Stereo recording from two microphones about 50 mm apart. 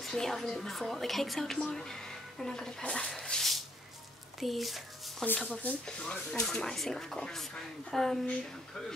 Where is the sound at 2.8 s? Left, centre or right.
Centre.